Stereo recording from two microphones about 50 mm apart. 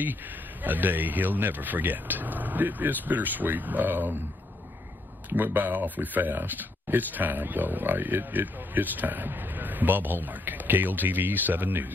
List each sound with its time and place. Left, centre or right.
0.0 s speech: right
5.3 s speech: right